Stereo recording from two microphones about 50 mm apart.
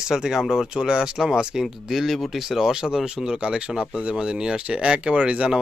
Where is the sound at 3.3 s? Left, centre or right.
Centre.